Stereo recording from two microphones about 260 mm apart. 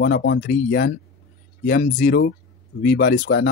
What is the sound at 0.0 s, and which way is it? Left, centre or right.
Speech, left.